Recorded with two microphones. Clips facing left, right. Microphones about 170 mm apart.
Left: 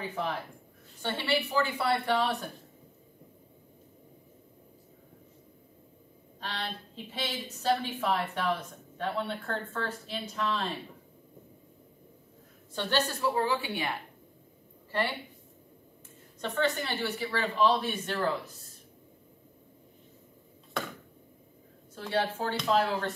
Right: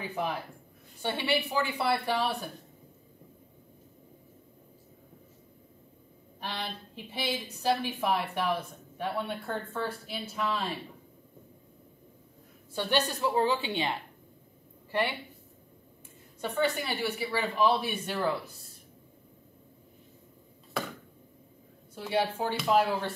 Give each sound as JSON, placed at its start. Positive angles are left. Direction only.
{"t": 0.0, "sound": "a woman's voice", "side_deg": -10}
{"t": 6.4, "sound": "a woman's voice", "side_deg": -10}
{"t": 12.7, "sound": "a woman's voice", "side_deg": -15}
{"t": 16.3, "sound": "a woman's voice", "side_deg": -10}
{"t": 20.7, "sound": "a sound", "side_deg": 0}
{"t": 21.9, "sound": "a woman's voice", "side_deg": -10}